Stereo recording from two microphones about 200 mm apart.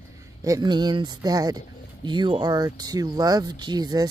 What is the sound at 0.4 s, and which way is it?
Speech, 15° right (ahead or behind).